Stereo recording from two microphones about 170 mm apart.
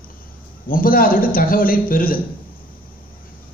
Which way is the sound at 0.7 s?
55° left (ahead or behind).